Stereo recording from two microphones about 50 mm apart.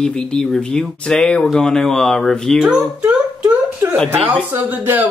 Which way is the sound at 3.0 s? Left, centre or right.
Right.